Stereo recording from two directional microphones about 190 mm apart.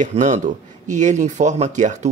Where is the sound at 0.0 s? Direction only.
40° right (ahead or behind).